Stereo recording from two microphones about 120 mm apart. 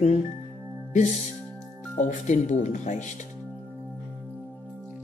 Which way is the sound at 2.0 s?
90° left.